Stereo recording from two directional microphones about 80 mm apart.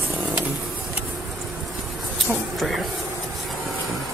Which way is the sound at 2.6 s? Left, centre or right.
Centre.